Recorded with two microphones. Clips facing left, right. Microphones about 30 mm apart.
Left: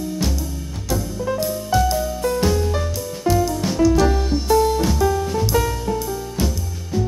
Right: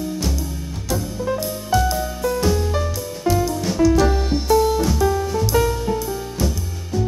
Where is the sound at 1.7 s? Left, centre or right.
Centre.